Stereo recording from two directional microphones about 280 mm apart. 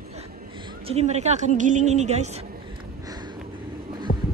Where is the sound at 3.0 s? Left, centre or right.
Centre.